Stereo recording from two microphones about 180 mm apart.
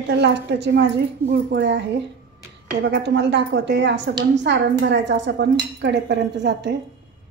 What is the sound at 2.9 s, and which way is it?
Speech, 70° right (ahead or behind).